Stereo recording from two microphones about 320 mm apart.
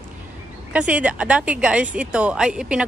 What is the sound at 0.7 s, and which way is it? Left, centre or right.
Speech, centre.